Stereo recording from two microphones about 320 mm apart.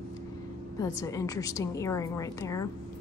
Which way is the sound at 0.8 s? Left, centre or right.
Centre.